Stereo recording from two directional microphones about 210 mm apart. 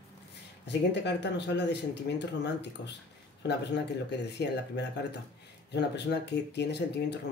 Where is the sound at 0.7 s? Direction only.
55° left (ahead or behind).